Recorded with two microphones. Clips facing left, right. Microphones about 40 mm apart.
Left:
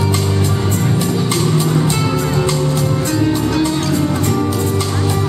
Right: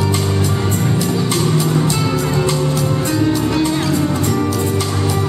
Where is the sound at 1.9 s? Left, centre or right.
Left.